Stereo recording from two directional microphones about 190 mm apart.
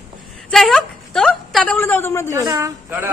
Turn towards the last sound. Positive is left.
turn(degrees=-15)  # may be behind; listen again after turning